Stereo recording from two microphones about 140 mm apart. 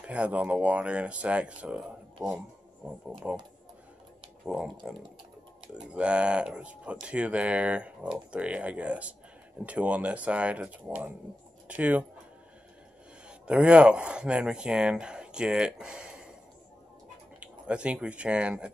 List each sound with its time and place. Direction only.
0.0 s speech: 10° right (ahead or behind)
3.1 s speech: 10° right (ahead or behind)
4.5 s speech: 5° right (ahead or behind)
13.3 s speech: 10° right (ahead or behind)
17.4 s speech: 10° right (ahead or behind)